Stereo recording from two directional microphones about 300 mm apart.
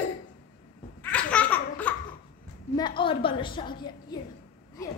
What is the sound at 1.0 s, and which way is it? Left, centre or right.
Laughter, centre.